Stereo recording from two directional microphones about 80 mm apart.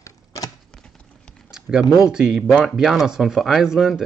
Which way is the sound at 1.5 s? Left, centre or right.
Centre.